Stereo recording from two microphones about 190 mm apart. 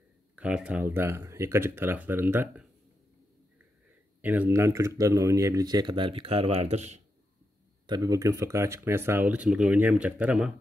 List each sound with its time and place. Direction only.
0.4 s speech: 5° right (ahead or behind)
4.2 s speech: 10° right (ahead or behind); by 7.0 s 35° right (ahead or behind)
7.8 s speech: 20° right (ahead or behind)